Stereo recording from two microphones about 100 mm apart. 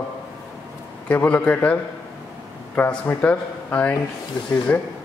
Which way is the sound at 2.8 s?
15° left (ahead or behind).